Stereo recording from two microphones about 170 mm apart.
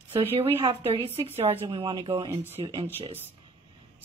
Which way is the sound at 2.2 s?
15° right (ahead or behind).